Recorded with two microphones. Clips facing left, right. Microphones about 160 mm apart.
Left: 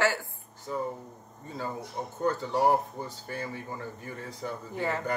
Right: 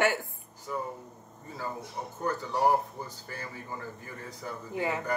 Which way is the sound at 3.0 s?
25° left (ahead or behind).